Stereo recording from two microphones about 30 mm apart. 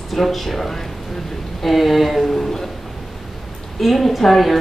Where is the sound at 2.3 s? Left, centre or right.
Centre.